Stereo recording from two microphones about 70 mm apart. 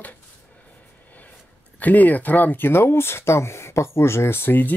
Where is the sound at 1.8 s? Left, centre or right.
Left.